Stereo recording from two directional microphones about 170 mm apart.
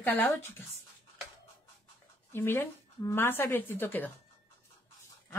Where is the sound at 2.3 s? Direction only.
15° left (ahead or behind).